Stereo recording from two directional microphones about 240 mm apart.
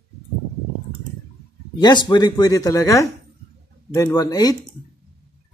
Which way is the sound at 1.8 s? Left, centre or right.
Centre.